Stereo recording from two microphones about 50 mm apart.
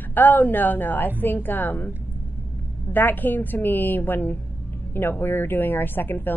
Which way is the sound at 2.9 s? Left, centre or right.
Left.